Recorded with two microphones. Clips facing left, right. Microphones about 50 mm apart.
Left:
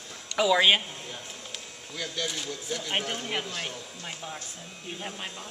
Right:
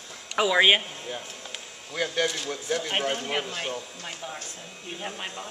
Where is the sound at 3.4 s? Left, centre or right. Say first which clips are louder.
Right 3 dB; right.